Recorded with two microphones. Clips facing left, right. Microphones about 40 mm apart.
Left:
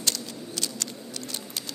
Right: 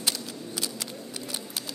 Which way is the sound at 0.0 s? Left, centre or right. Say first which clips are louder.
Even; centre.